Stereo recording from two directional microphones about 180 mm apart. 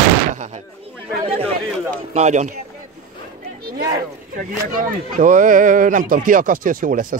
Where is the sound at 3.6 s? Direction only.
55° right (ahead or behind).